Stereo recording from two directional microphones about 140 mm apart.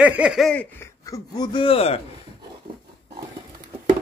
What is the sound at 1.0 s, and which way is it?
Speech, 25° left (ahead or behind).